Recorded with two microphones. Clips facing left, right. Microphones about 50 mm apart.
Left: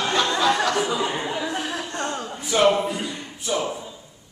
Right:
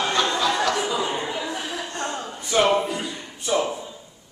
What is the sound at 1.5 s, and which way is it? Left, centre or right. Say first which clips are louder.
Chuckle: left 2 dB; left.